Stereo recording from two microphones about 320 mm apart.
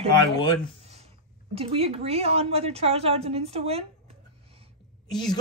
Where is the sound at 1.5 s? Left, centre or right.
Centre.